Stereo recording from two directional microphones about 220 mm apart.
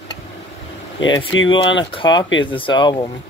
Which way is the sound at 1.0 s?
60° left (ahead or behind).